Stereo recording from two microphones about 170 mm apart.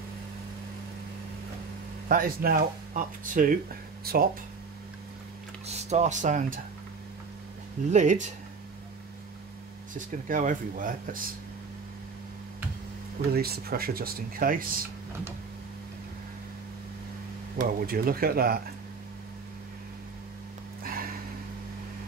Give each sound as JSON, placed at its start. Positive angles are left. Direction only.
{"t": 2.0, "sound": "speech", "side_deg": -60}
{"t": 5.7, "sound": "speech", "side_deg": -40}
{"t": 7.9, "sound": "speech", "side_deg": -45}
{"t": 9.9, "sound": "speech", "side_deg": -50}
{"t": 13.3, "sound": "speech", "side_deg": -65}
{"t": 17.6, "sound": "speech", "side_deg": -60}